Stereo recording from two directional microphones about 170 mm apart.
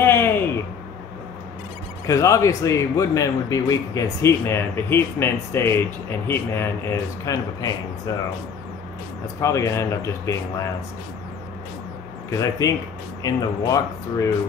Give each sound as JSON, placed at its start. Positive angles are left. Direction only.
{"t": 0.0, "sound": "a sound", "side_deg": 15}
{"t": 2.0, "sound": "speech", "side_deg": 20}
{"t": 9.4, "sound": "speech", "side_deg": 15}
{"t": 12.4, "sound": "speech", "side_deg": 20}